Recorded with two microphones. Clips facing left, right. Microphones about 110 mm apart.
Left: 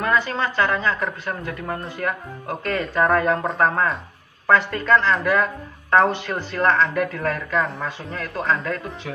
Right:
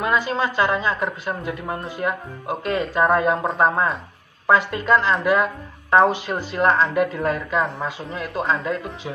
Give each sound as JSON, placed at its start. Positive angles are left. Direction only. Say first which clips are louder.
{"t": 0.0, "sound": "speech", "louder": "right 1 dB", "side_deg": -15}